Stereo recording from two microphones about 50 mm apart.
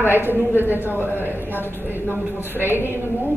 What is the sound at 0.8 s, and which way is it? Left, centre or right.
Speech, left.